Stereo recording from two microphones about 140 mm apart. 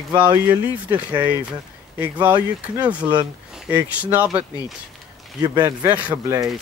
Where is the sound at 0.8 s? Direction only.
10° right (ahead or behind).